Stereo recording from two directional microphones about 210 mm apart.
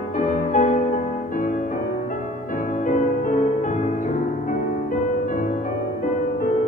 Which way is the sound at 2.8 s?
35° left (ahead or behind).